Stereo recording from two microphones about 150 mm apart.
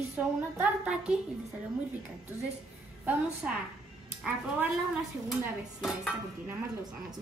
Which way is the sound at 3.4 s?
10° right (ahead or behind).